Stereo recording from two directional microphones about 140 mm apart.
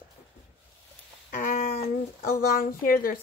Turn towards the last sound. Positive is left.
turn(degrees=90)